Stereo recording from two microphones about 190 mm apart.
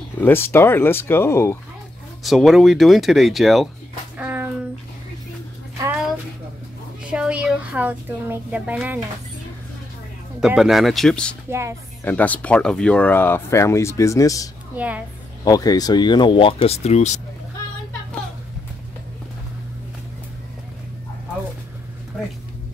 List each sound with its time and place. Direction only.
0.2 s speech: 10° left (ahead or behind)
2.2 s speech: centre (ahead or behind)
4.2 s a sound: 10° right (ahead or behind)
7.1 s a woman's voice: 5° right (ahead or behind)
10.4 s speech: centre (ahead or behind); by 17.2 s 35° left (ahead or behind)